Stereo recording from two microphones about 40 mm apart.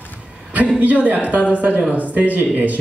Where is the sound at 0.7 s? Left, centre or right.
Right.